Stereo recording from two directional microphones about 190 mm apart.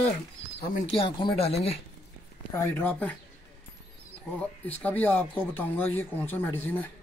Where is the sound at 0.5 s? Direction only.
25° left (ahead or behind).